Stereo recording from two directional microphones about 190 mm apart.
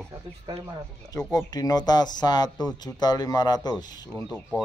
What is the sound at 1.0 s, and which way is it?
Speech, 20° left (ahead or behind).